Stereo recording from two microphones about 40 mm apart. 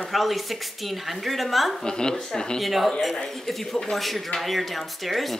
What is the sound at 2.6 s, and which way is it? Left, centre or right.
Speech, centre.